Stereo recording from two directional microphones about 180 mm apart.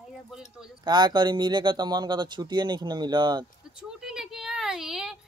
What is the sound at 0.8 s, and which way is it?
Speech, 25° right (ahead or behind).